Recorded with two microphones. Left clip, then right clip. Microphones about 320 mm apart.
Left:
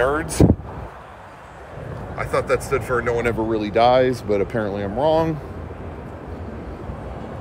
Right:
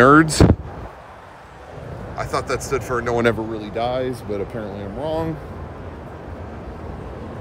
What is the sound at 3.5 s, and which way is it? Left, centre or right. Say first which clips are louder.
Speech: left 8 dB; centre.